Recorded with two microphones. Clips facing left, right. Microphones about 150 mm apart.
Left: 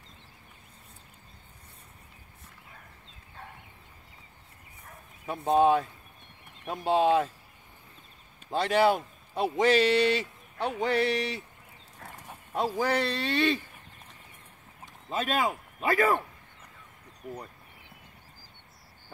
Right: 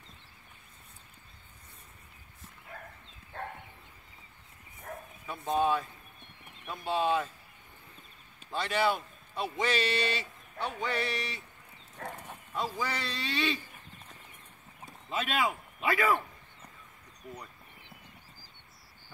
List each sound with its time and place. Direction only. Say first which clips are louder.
5.2 s a man's voice: left 6 dB; 65° left (ahead or behind)
6.7 s a sound: left 6 dB; 85° left
8.5 s a man's voice: left 6 dB; 85° left
10.7 s a sound: left 8 dB; 80° left
12.0 s livestock: right 7 dB; 55° right (ahead or behind)
12.5 s a man's voice: left 7 dB; 55° left (ahead or behind)
15.0 s speech: left 3 dB; 40° left (ahead or behind)